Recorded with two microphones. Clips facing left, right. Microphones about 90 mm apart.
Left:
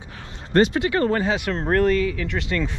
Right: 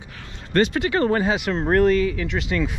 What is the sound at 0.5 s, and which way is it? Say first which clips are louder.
Speech: left 2 dB; 25° left (ahead or behind).